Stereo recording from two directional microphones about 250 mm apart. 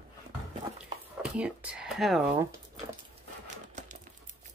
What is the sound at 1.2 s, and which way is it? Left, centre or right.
Speech, centre.